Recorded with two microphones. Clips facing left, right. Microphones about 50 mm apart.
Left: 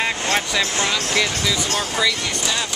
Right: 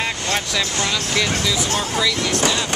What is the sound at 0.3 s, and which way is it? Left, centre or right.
Speech, centre.